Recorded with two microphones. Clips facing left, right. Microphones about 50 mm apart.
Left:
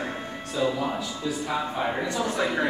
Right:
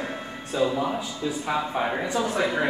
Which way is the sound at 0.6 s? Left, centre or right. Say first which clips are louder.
Right 2 dB; right.